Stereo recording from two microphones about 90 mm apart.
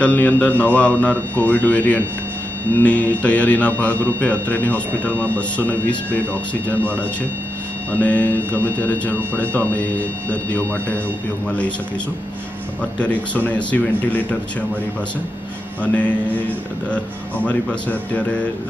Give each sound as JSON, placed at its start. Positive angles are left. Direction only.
{"t": 0.0, "sound": "speech", "side_deg": 15}
{"t": 7.9, "sound": "speech", "side_deg": 15}
{"t": 11.4, "sound": "speech", "side_deg": 15}
{"t": 13.0, "sound": "speech", "side_deg": 15}
{"t": 15.8, "sound": "speech", "side_deg": 15}